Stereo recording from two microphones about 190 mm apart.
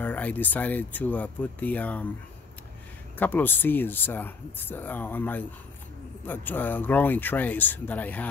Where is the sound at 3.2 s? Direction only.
10° left (ahead or behind).